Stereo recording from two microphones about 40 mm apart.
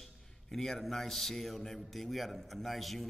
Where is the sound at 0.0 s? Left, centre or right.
Centre.